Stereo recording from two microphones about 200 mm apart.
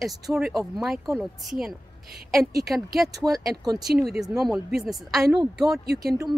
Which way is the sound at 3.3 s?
20° right (ahead or behind).